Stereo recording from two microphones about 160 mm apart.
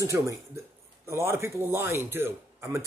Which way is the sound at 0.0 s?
20° right (ahead or behind).